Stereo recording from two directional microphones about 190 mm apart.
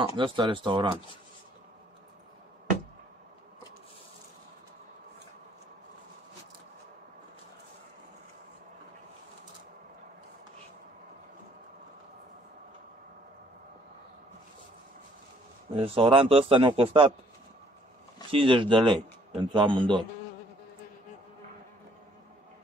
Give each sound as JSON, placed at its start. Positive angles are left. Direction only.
{"t": 0.0, "sound": "a man's voice", "side_deg": -25}
{"t": 15.7, "sound": "a man's voice", "side_deg": -30}
{"t": 18.3, "sound": "a man's voice", "side_deg": -25}